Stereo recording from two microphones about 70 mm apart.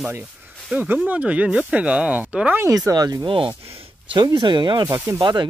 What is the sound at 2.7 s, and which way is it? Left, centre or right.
Speech, right.